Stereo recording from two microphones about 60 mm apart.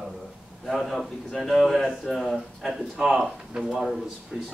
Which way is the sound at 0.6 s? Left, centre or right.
Centre.